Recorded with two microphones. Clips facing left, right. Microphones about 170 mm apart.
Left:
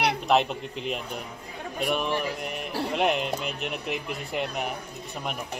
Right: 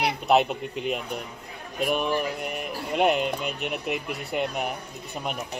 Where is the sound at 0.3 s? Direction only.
5° right (ahead or behind).